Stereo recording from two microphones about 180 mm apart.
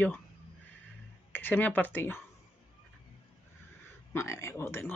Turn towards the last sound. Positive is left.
turn(degrees=10)  # may be behind; listen again after turning